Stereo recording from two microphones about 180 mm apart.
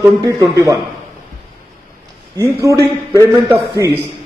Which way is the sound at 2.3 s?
15° right (ahead or behind).